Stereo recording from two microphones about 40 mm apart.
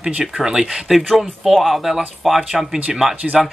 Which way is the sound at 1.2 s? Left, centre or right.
Centre.